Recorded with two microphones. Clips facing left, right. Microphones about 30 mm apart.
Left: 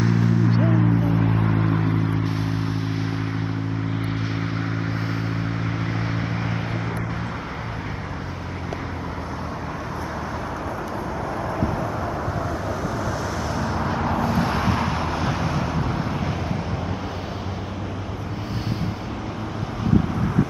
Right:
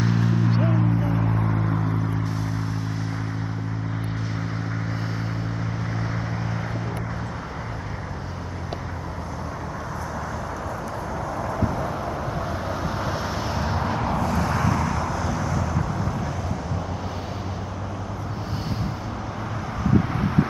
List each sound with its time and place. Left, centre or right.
0.0 s a sound: centre
1.2 s vehicle: left
5.9 s vehicle: left
13.0 s vehicle: right
13.8 s vehicle: centre
14.2 s vehicle: left